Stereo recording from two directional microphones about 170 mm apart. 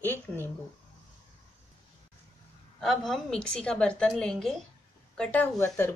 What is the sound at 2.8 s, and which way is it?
A woman's voice, centre (ahead or behind).